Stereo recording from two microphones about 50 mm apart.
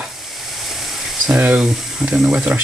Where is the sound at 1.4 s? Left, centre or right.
Right.